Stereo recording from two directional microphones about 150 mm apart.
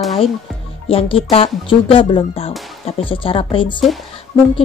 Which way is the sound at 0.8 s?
40° left (ahead or behind).